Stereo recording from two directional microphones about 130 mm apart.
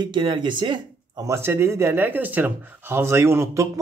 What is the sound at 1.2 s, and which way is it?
Speech, 20° right (ahead or behind).